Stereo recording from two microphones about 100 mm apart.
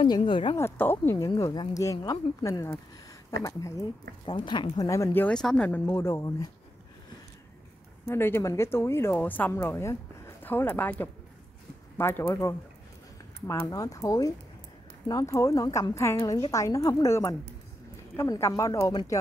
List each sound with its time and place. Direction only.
0.0 s speech: 55° left (ahead or behind)
0.6 s speech: 25° left (ahead or behind)
1.1 s a woman's voice: 35° left (ahead or behind)
4.3 s speech: 55° left (ahead or behind)
4.8 s a woman's voice: 30° left (ahead or behind)
5.3 s speech: 5° left (ahead or behind)
5.7 s speech: 20° left (ahead or behind)
8.1 s speech: 25° left (ahead or behind)
13.7 s a woman's voice: 35° left (ahead or behind)